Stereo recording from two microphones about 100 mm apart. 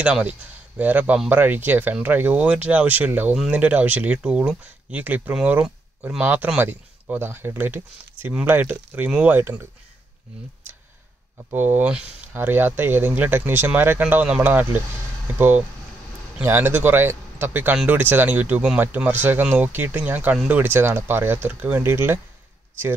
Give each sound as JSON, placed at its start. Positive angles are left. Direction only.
{"t": 0.0, "sound": "speech", "side_deg": -10}
{"t": 11.5, "sound": "speech", "side_deg": -20}